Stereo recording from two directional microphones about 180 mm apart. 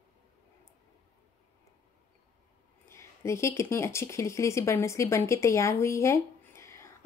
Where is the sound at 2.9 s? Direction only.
15° left (ahead or behind).